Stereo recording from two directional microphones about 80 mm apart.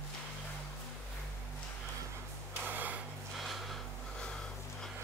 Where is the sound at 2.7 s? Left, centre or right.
Right.